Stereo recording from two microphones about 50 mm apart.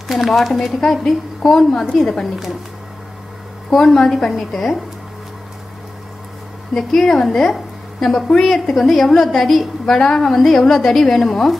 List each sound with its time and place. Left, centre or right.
0.1 s a woman's voice: centre
3.7 s a woman's voice: centre
6.7 s a woman's voice: centre
9.9 s a woman's voice: centre
10.3 s a woman's voice: centre